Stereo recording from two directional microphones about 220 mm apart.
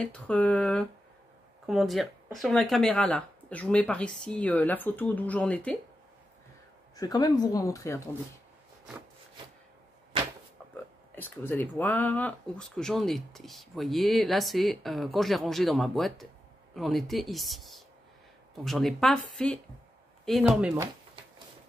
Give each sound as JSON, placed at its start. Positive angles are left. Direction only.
{"t": 0.0, "sound": "speech", "side_deg": 5}
{"t": 7.0, "sound": "speech", "side_deg": 15}
{"t": 11.1, "sound": "speech", "side_deg": 10}